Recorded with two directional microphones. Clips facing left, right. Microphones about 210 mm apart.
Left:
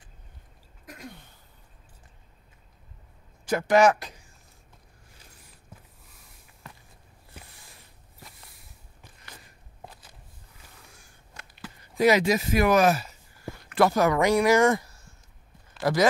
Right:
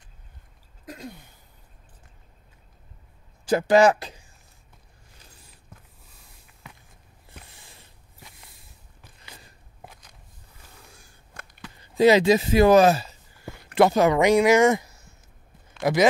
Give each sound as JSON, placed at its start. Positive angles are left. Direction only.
{"t": 3.4, "sound": "speech", "side_deg": -30}
{"t": 9.8, "sound": "crackle", "side_deg": 5}
{"t": 11.4, "sound": "a sound", "side_deg": -50}
{"t": 11.8, "sound": "speech", "side_deg": -25}